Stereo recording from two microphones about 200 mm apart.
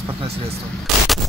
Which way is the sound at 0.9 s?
Centre (ahead or behind).